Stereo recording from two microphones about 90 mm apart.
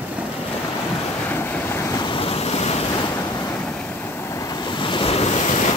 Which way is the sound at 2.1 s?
90° left.